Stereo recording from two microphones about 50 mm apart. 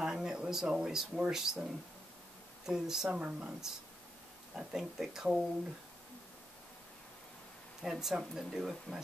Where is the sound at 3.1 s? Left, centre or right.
Right.